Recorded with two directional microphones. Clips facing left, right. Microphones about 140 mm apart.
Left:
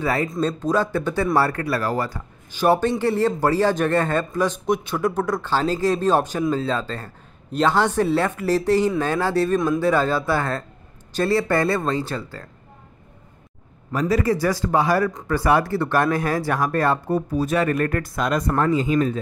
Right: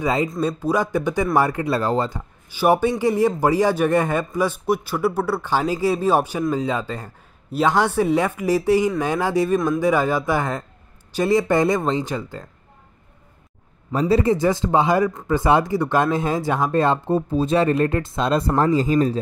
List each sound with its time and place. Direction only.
0.0 s a man's voice: 20° right (ahead or behind)
2.5 s a man's voice: 10° right (ahead or behind)
13.9 s speech: 30° right (ahead or behind)